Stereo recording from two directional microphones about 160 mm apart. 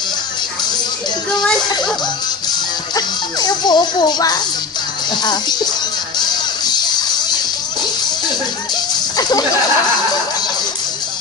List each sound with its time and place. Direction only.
3.3 s speech: 25° left (ahead or behind)
6.1 s music: 25° left (ahead or behind)